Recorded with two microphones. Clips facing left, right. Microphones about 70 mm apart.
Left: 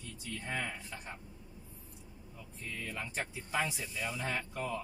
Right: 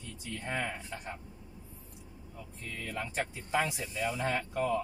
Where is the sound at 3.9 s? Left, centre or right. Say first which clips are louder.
Right 6 dB; right.